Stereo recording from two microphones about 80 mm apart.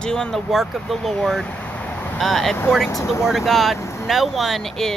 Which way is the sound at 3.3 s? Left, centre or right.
Centre.